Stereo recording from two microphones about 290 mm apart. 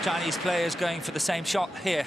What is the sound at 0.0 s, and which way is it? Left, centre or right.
Speech, centre.